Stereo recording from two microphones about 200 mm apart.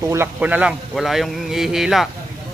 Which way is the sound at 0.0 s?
10° right (ahead or behind).